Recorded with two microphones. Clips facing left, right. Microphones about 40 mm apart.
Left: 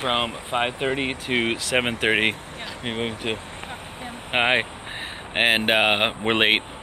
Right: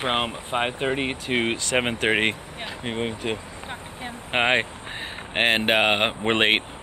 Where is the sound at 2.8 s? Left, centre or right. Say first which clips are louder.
Even; left.